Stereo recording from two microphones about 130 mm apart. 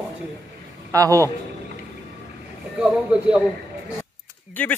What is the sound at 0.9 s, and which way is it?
Speech, 25° right (ahead or behind).